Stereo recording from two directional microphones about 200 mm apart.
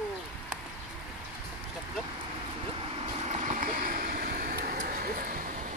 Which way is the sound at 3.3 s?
40° right (ahead or behind).